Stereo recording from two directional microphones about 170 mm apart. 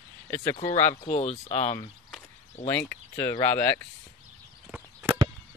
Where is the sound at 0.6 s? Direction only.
40° left (ahead or behind).